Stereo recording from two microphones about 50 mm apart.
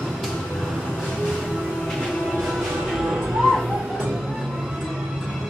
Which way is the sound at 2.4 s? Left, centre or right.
Centre.